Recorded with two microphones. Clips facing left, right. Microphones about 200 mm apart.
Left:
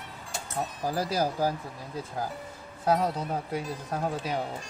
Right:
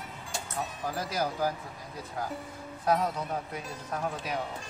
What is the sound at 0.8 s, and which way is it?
Speech, 35° left (ahead or behind).